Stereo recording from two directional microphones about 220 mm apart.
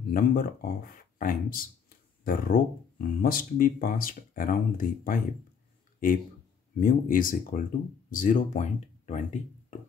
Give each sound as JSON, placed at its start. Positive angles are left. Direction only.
{"t": 0.1, "sound": "speech", "side_deg": 40}
{"t": 6.8, "sound": "speech", "side_deg": 40}